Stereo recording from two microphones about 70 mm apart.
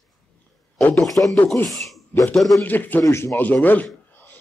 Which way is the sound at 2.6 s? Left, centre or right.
Left.